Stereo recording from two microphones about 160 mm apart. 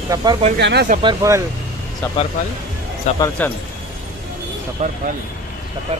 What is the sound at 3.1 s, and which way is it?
Speech, 45° left (ahead or behind).